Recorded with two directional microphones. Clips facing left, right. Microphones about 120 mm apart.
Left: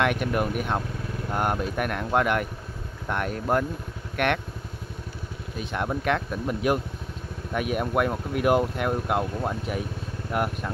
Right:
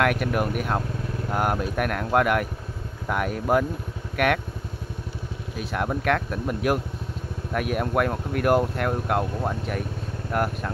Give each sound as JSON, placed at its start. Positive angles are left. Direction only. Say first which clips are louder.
{"t": 0.0, "sound": "speech", "louder": "right 1 dB", "side_deg": 0}
{"t": 5.6, "sound": "speech", "louder": "right 1 dB", "side_deg": 0}